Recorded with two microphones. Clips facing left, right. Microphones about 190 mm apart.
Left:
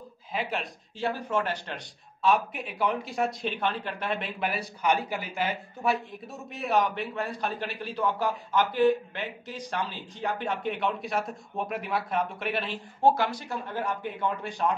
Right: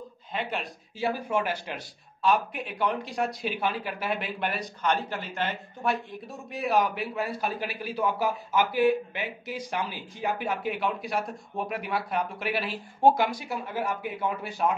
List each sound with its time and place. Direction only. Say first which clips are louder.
0.3 s speech: left 1 dB; centre (ahead or behind)
0.9 s speech: right 1 dB; 10° right (ahead or behind)
2.2 s speech: even; centre (ahead or behind)